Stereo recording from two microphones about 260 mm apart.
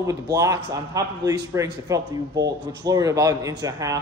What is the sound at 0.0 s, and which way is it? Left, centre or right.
Speech, centre.